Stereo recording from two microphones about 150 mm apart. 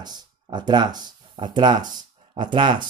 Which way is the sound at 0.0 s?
30° right (ahead or behind).